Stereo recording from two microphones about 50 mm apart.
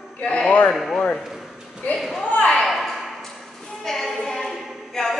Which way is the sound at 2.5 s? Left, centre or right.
Centre.